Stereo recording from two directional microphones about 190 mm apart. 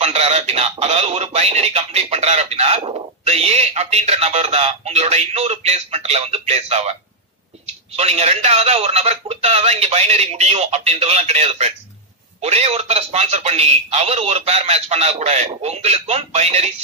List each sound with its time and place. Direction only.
0.0 s speech: 35° right (ahead or behind)